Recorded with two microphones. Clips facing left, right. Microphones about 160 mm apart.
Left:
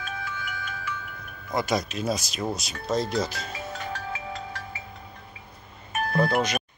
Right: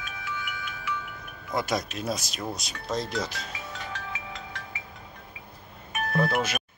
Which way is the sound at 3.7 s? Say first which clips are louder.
Left 4 dB; 40° left (ahead or behind).